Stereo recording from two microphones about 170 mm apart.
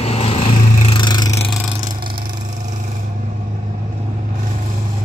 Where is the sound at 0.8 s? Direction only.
25° left (ahead or behind).